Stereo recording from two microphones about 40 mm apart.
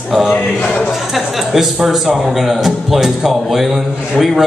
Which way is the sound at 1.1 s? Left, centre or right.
Centre.